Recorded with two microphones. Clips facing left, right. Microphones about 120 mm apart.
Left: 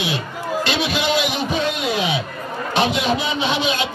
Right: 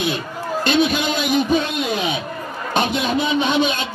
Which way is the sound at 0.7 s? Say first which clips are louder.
Right 8 dB; 50° right (ahead or behind).